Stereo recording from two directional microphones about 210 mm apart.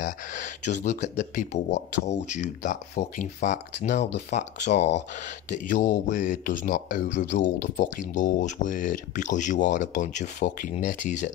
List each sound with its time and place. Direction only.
0.0 s speech: 35° left (ahead or behind)